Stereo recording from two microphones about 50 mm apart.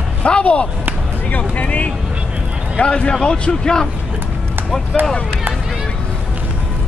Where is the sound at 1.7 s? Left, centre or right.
Left.